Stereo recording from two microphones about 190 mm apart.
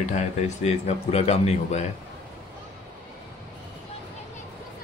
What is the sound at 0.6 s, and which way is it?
Speech, 35° left (ahead or behind).